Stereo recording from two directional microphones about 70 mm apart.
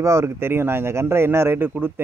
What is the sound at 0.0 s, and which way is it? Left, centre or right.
Speech, right.